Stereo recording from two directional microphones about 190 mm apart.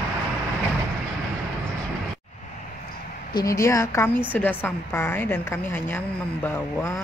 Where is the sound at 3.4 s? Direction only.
15° left (ahead or behind).